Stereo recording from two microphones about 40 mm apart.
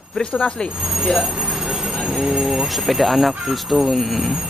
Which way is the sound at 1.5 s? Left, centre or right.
Centre.